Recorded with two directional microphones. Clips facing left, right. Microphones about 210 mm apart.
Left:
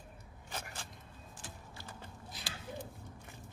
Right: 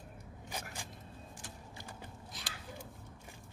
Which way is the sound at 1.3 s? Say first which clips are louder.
Right 1 dB; 15° right (ahead or behind).